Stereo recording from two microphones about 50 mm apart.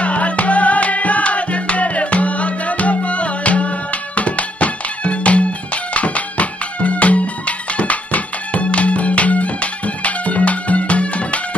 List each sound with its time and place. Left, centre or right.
0.0 s music: left